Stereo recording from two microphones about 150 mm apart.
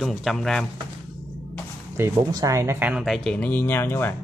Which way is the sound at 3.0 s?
5° left (ahead or behind).